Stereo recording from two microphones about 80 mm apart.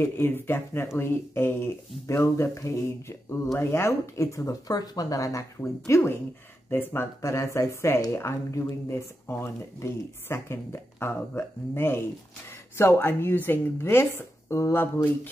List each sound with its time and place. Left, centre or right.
0.0 s a woman's voice: left
5.6 s a woman's voice: left